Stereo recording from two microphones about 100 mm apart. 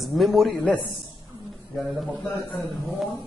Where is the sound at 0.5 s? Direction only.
10° left (ahead or behind).